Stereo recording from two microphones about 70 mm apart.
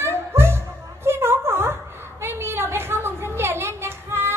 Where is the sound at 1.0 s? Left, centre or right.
Right.